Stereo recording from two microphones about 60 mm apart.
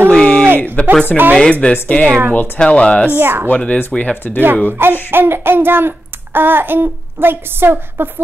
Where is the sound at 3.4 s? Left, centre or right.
Left.